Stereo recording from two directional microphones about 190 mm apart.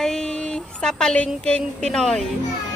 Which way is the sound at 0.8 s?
5° left (ahead or behind).